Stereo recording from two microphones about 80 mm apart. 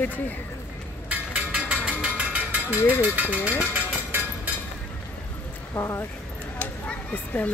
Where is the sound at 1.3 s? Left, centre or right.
Centre.